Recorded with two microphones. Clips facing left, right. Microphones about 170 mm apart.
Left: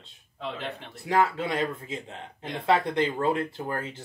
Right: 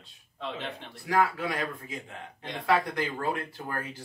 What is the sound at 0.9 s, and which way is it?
Speech, 25° left (ahead or behind).